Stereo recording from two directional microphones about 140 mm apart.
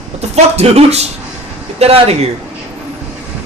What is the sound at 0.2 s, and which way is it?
Speech, 50° right (ahead or behind).